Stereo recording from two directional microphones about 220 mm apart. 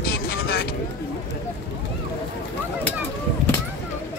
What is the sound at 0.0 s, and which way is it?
Vehicle, 45° left (ahead or behind).